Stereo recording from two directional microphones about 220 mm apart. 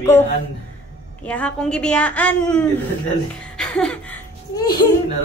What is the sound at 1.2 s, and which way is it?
A woman's voice, 5° left (ahead or behind).